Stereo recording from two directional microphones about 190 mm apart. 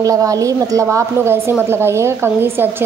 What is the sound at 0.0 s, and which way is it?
A woman's voice, 15° right (ahead or behind).